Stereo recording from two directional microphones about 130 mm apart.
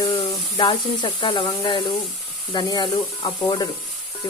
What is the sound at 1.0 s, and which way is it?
Speech, 35° left (ahead or behind).